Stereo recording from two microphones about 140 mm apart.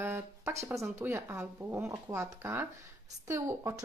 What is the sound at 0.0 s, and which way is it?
Speech, 20° right (ahead or behind).